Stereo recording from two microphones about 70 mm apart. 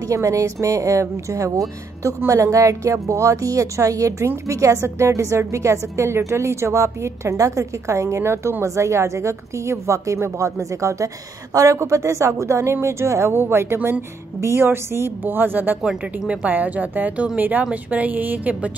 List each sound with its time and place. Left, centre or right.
0.1 s a woman's voice: right
15.8 s speech: centre
16.4 s a woman's voice: right